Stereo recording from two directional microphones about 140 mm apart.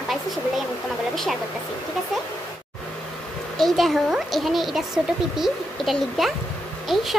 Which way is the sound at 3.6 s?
Centre (ahead or behind).